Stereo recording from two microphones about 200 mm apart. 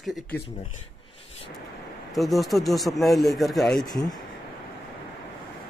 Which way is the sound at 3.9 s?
20° left (ahead or behind).